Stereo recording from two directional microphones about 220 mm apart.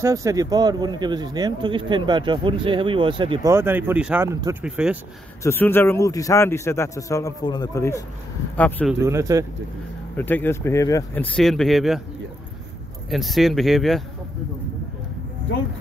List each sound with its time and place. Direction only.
0.0 s speech: 15° right (ahead or behind)
3.5 s speech: 10° right (ahead or behind)
4.6 s speech: 5° right (ahead or behind)
5.4 s a man's voice: 10° left (ahead or behind)
9.0 s speech: 15° right (ahead or behind)
10.1 s a man's voice: 10° left (ahead or behind)
11.3 s speech: centre (ahead or behind)
13.1 s speech: centre (ahead or behind)